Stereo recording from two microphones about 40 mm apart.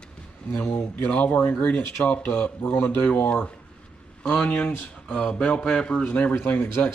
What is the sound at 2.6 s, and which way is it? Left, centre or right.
Speech, left.